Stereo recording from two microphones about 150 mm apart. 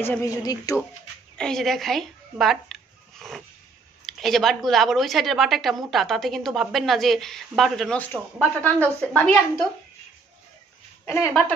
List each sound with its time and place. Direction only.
0.0 s speech: 15° left (ahead or behind)
1.3 s a woman's voice: 5° left (ahead or behind)